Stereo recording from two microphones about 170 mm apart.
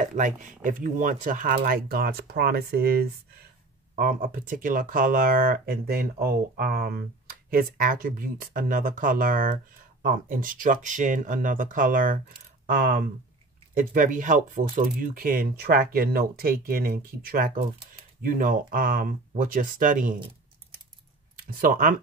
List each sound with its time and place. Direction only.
0.0 s speech: 50° right (ahead or behind); by 3.1 s 65° right (ahead or behind)
3.9 s speech: 55° right (ahead or behind)
21.4 s speech: 55° right (ahead or behind)